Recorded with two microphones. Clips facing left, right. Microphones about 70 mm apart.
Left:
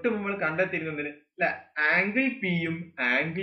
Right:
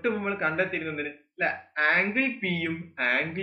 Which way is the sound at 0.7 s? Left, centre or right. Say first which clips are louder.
Even; centre.